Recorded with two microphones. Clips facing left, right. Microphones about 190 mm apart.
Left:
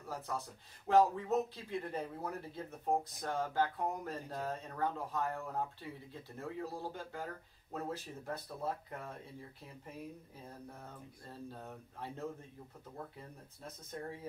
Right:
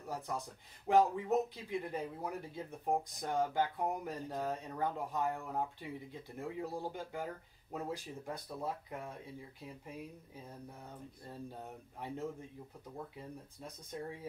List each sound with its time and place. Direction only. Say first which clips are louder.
0.1 s speech: right 1 dB; 15° right (ahead or behind)
11.6 s speech: right 1 dB; 15° right (ahead or behind)